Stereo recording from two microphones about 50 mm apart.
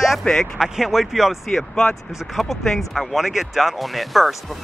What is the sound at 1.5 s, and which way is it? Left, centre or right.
Speech, centre.